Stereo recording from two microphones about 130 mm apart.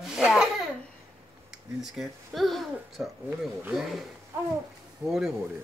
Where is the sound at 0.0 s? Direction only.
5° right (ahead or behind).